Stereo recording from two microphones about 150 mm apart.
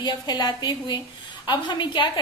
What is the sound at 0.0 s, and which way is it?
A woman's voice, 30° left (ahead or behind).